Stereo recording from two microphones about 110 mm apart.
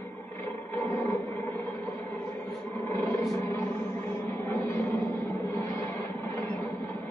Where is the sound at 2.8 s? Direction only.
20° left (ahead or behind).